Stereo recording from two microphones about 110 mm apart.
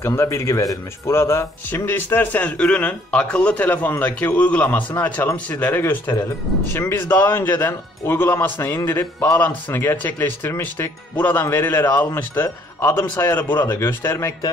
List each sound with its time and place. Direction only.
0.0 s a man's voice: 25° left (ahead or behind)